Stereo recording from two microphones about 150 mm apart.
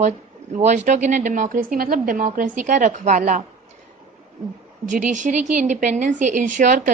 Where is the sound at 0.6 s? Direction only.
50° right (ahead or behind).